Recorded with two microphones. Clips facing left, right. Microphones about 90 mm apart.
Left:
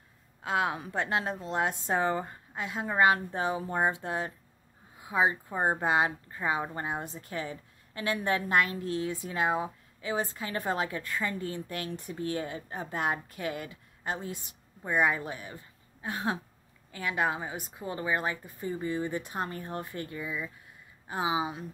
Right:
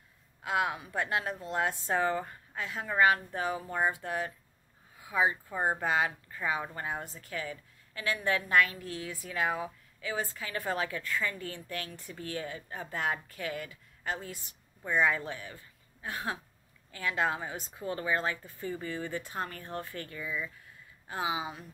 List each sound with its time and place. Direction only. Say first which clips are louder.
0.4 s speech: left 1 dB; 25° left (ahead or behind)